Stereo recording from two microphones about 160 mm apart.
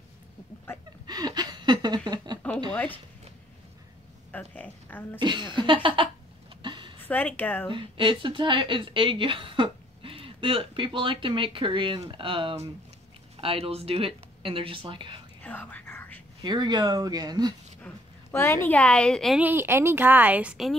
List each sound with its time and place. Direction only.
1.0 s a sound: 25° right (ahead or behind)
2.7 s speech: 10° left (ahead or behind)
4.3 s speech: 10° left (ahead or behind)
5.2 s speech: 30° right (ahead or behind)
6.6 s a sound: 30° right (ahead or behind)
7.1 s speech: 10° left (ahead or behind)
7.7 s speech: 30° right (ahead or behind)
15.4 s whispering: 10° left (ahead or behind)
16.4 s speech: 30° right (ahead or behind)
17.8 s a woman's voice: 15° left (ahead or behind)
19.4 s speech: 15° right (ahead or behind)